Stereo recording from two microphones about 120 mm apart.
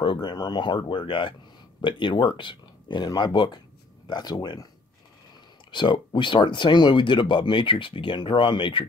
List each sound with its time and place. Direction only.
0.0 s speech: 45° left (ahead or behind)
5.7 s speech: 40° left (ahead or behind)